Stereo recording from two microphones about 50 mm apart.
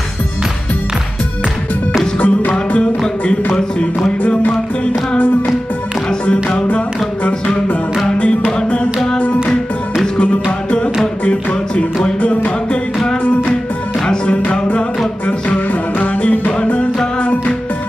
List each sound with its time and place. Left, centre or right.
2.1 s music: left
7.2 s music: left
11.2 s music: left
14.0 s music: left